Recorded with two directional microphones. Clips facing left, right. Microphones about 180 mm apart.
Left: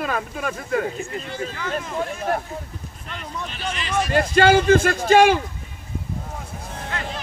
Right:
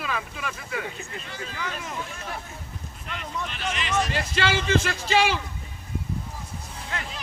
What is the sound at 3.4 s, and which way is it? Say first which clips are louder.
Speech: left 3 dB; 35° left (ahead or behind).